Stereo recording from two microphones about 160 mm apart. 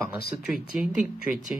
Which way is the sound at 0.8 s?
10° right (ahead or behind).